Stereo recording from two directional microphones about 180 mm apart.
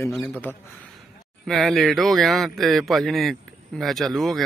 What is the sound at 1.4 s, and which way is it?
Speech, centre (ahead or behind).